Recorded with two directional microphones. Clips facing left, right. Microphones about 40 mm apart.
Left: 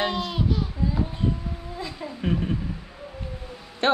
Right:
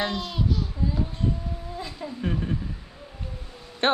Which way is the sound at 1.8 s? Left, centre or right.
Left.